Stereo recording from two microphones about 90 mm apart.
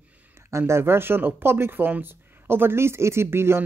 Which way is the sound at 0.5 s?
30° right (ahead or behind).